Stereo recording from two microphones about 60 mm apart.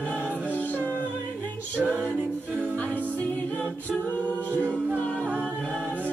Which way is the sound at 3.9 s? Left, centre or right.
Centre.